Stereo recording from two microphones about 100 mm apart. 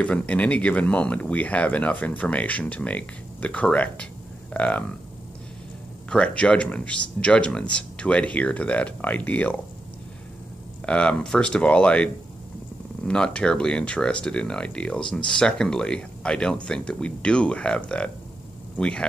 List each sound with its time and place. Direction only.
0.0 s speech: 10° left (ahead or behind)
6.0 s speech: 10° left (ahead or behind)
10.9 s speech: 10° left (ahead or behind)